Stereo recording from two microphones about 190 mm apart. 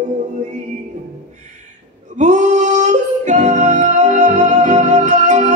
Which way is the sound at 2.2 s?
40° right (ahead or behind).